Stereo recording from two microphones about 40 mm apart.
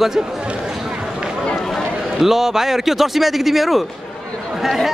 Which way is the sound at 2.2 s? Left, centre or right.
Centre.